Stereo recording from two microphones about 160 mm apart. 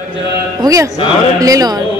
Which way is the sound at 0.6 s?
20° right (ahead or behind).